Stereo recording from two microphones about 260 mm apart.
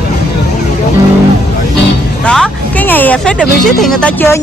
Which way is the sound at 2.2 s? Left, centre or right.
Centre.